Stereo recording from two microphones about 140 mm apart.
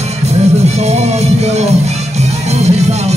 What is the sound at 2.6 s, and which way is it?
Music, 50° right (ahead or behind).